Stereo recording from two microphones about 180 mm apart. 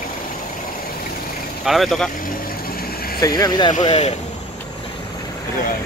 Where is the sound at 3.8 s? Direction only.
35° left (ahead or behind).